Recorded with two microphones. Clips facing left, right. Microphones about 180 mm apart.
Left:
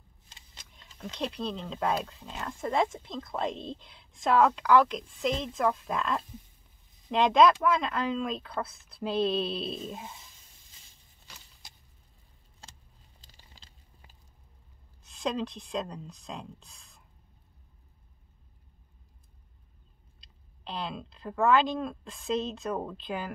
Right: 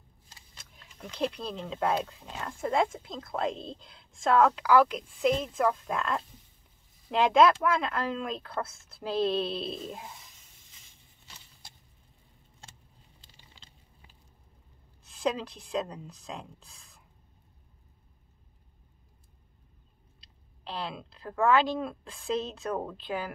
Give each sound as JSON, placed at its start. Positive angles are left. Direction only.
{"t": 1.1, "sound": "speech", "side_deg": 0}
{"t": 13.2, "sound": "a sound", "side_deg": 40}
{"t": 15.0, "sound": "speech", "side_deg": -5}
{"t": 20.6, "sound": "speech", "side_deg": 0}